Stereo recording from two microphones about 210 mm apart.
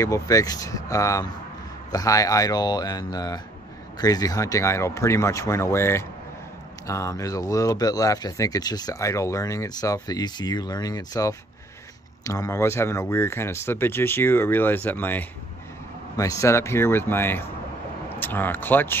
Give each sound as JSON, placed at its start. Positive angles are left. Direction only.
{"t": 0.0, "sound": "speech", "side_deg": 15}